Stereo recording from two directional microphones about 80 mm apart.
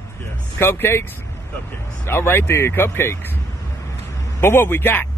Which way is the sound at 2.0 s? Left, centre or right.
Left.